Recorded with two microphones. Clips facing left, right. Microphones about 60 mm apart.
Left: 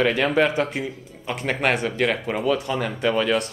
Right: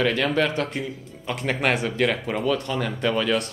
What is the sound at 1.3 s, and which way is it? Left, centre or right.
Speech, centre.